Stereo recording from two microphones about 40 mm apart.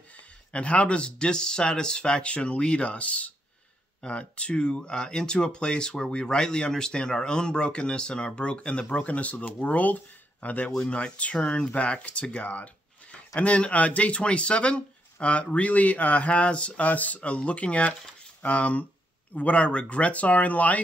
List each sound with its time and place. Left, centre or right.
0.1 s speech: left
10.8 s speech: left